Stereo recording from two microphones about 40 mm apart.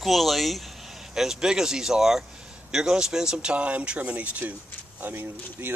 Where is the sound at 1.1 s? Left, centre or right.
Centre.